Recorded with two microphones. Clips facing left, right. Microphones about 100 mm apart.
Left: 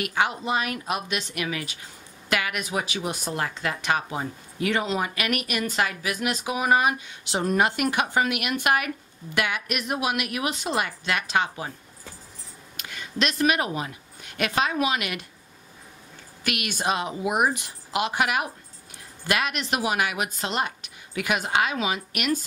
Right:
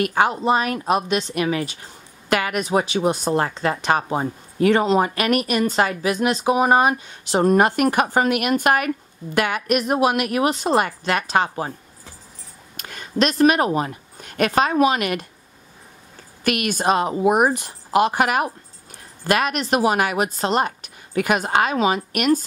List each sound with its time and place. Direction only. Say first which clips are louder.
0.0 s speech: right 7 dB; 40° right (ahead or behind)
12.7 s speech: right 8 dB; 45° right (ahead or behind)
16.4 s a woman's voice: right 7 dB; 45° right (ahead or behind)